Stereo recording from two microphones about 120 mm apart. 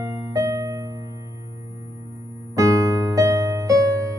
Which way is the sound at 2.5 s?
25° right (ahead or behind).